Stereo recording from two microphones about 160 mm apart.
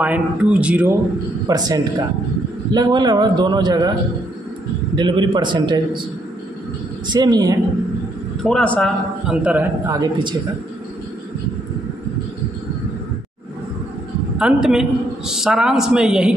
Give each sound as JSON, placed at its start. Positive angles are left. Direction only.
{"t": 0.0, "sound": "speech", "side_deg": -10}
{"t": 1.5, "sound": "a man's voice", "side_deg": -20}
{"t": 4.9, "sound": "a man's voice", "side_deg": -30}
{"t": 7.1, "sound": "a man's voice", "side_deg": -25}
{"t": 8.5, "sound": "a woman's voice", "side_deg": 5}
{"t": 9.3, "sound": "speech", "side_deg": -10}
{"t": 9.8, "sound": "a man's voice", "side_deg": -25}
{"t": 14.4, "sound": "a woman's voice", "side_deg": -5}